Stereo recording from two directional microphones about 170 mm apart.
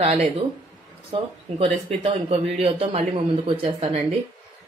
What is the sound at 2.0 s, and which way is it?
A woman's voice, 40° right (ahead or behind).